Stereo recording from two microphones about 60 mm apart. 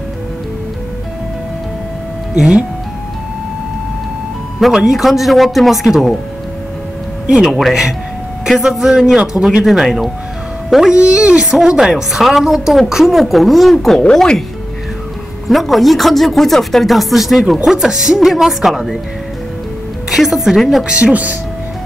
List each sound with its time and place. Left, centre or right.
2.3 s a woman's voice: centre
4.6 s speech: centre
7.2 s a woman's voice: centre
11.0 s a woman's voice: centre
15.4 s a woman's voice: centre
20.1 s a woman's voice: centre
20.8 s speech: centre